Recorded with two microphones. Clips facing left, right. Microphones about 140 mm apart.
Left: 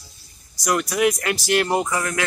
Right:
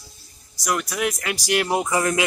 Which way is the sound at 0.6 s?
5° right (ahead or behind).